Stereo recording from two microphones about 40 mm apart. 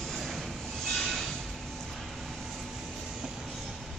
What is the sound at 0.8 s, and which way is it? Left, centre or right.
Train, centre.